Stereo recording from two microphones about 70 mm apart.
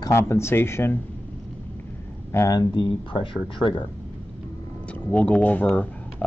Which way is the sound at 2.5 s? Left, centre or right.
Left.